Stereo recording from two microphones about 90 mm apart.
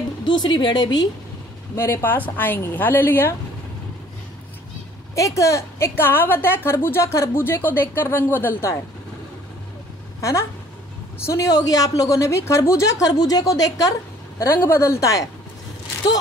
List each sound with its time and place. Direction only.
0.4 s a woman's voice: 55° left (ahead or behind)
1.8 s a woman's voice: 30° left (ahead or behind)
5.1 s a woman's voice: 35° left (ahead or behind)
11.2 s a woman's voice: 40° left (ahead or behind)
14.4 s a woman's voice: 25° left (ahead or behind)